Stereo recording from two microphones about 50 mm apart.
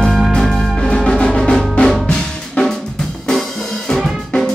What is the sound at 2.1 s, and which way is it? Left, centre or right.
Drum, centre.